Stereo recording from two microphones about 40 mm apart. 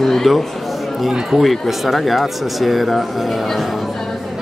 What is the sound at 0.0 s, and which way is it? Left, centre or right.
Speech, centre.